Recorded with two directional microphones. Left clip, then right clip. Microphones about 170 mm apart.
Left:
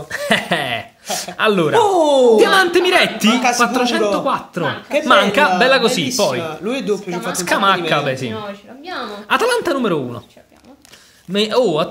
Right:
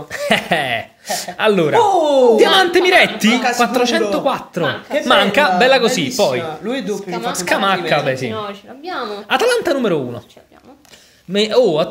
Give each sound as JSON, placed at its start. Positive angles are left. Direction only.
{"t": 0.1, "sound": "speech", "side_deg": 0}
{"t": 1.8, "sound": "speech", "side_deg": 40}
{"t": 2.3, "sound": "speech", "side_deg": 0}
{"t": 9.3, "sound": "speech", "side_deg": 0}
{"t": 11.3, "sound": "speech", "side_deg": 0}